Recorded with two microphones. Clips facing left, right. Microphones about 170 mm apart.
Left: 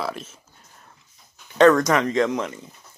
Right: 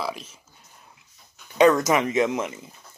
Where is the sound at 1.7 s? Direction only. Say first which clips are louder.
Left 1 dB; 5° right (ahead or behind).